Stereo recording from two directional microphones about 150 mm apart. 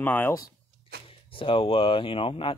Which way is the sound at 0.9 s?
90° right.